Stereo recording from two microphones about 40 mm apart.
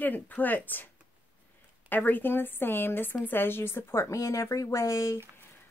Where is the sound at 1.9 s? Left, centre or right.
Left.